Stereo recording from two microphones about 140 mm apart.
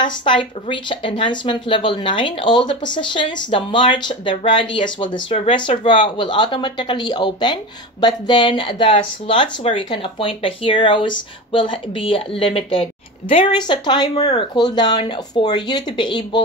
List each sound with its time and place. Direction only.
0.0 s speech: 35° left (ahead or behind)